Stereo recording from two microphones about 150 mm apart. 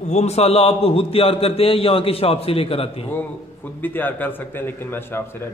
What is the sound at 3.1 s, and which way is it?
A man's voice, 15° left (ahead or behind).